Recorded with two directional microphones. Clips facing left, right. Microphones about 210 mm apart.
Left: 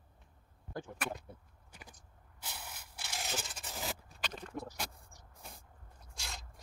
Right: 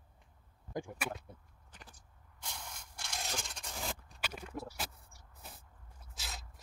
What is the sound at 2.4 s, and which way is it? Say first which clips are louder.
Scrape: even; 5° left (ahead or behind).